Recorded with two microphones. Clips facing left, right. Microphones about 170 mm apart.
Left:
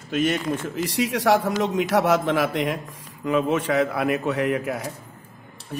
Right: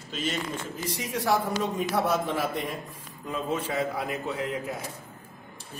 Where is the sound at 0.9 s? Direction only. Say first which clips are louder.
Left 6 dB; 90° left.